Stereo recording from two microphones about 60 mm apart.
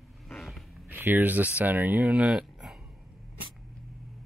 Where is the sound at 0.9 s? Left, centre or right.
Right.